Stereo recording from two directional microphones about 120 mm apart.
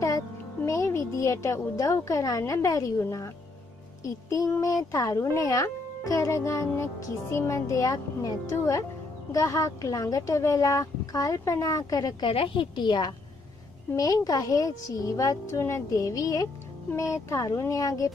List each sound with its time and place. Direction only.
0.7 s speech: 25° left (ahead or behind)
12.3 s a woman's voice: 45° left (ahead or behind); by 18.1 s 25° left (ahead or behind)